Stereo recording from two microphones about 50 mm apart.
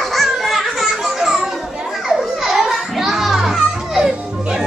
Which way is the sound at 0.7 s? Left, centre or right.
Centre.